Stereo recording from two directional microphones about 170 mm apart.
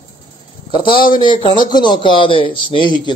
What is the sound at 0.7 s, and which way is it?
A man's voice, 30° left (ahead or behind).